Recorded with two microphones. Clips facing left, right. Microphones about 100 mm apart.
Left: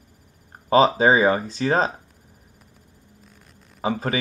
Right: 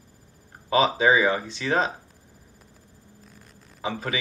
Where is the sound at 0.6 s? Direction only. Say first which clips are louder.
Left 4 dB; 35° left (ahead or behind).